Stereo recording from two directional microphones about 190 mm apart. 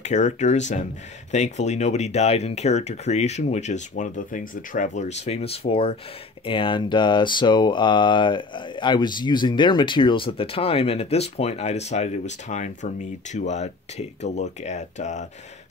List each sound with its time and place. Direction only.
0.0 s speech: 40° left (ahead or behind)
6.4 s a sound: 25° left (ahead or behind)
14.3 s speech: 35° left (ahead or behind)